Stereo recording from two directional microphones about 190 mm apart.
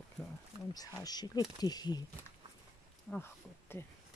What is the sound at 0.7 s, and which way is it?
Speech, 20° left (ahead or behind).